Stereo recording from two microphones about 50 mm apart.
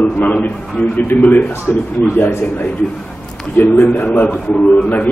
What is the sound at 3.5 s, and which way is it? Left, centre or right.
Speech, left.